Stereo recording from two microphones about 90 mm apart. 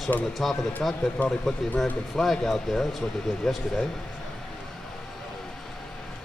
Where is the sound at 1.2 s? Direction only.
20° left (ahead or behind).